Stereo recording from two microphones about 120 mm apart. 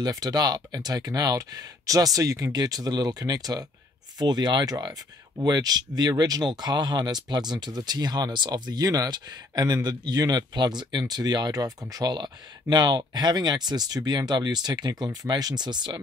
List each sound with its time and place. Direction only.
0.0 s speech: 30° right (ahead or behind)